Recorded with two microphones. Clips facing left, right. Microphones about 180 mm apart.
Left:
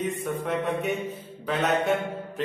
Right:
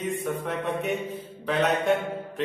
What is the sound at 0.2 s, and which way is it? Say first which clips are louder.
Music: left 1 dB; centre (ahead or behind).